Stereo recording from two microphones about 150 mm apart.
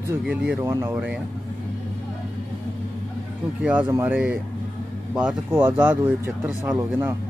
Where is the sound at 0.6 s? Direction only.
15° right (ahead or behind).